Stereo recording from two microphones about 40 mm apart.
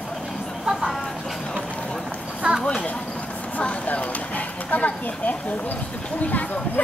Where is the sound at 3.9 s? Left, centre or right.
Left.